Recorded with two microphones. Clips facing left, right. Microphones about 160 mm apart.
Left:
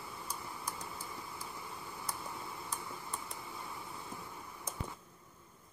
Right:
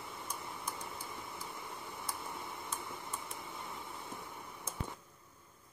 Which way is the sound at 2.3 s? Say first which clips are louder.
Even; 20° right (ahead or behind).